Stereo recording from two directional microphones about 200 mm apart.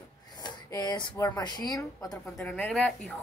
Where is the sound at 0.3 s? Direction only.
20° left (ahead or behind).